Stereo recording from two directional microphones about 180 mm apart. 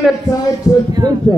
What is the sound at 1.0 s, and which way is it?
Speech, 25° right (ahead or behind).